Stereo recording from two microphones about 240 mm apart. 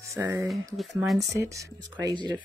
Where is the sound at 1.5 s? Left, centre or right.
Centre.